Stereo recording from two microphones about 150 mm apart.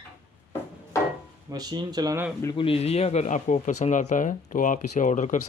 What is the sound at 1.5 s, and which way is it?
Speech, 25° right (ahead or behind).